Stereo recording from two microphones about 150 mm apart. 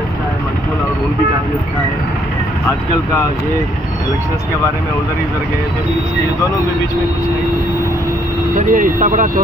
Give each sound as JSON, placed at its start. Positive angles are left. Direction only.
{"t": 8.5, "sound": "speech", "side_deg": -60}